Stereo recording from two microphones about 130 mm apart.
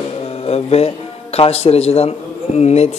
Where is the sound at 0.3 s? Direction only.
50° left (ahead or behind).